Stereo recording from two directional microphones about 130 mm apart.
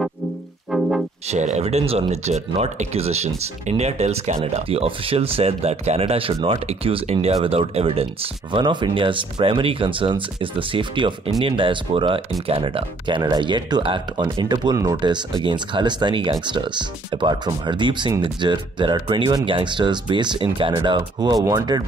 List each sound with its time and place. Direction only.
0.7 s brass instrument: centre (ahead or behind)
1.3 s speech: 60° right (ahead or behind); by 21.8 s 30° right (ahead or behind)